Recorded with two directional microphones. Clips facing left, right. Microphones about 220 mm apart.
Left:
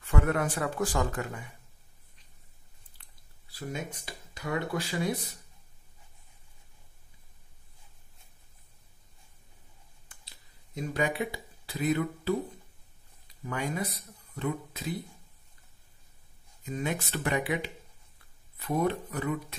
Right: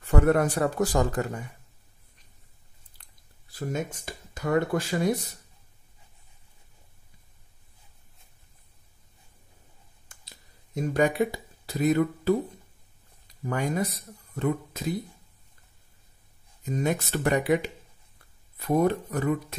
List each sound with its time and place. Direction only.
0.0 s speech: 40° right (ahead or behind)
3.5 s speech: 45° right (ahead or behind)
10.7 s speech: 45° right (ahead or behind)
13.5 s speech: 45° right (ahead or behind)
16.6 s speech: 40° right (ahead or behind)